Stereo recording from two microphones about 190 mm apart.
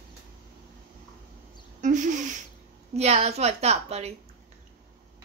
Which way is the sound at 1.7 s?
40° right (ahead or behind).